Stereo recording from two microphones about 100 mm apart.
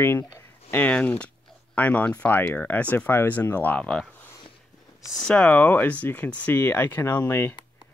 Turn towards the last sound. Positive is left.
turn(degrees=25)  # may be behind; listen again after turning